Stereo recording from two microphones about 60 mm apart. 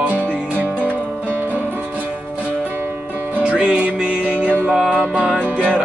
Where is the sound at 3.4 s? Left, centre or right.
Right.